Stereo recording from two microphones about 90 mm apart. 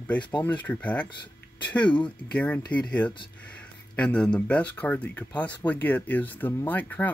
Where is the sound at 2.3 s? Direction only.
15° left (ahead or behind).